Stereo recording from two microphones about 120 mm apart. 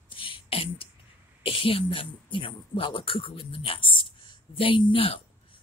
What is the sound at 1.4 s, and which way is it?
Speech, 50° left (ahead or behind).